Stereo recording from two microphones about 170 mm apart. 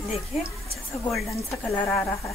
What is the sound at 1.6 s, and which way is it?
Speech, centre (ahead or behind).